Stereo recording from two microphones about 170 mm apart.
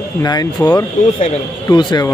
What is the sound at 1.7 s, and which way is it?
Speech, 25° left (ahead or behind).